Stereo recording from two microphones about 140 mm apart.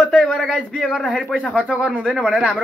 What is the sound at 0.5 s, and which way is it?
Speech, 5° right (ahead or behind).